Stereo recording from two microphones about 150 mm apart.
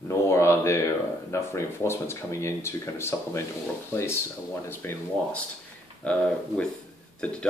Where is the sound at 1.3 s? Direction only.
20° left (ahead or behind).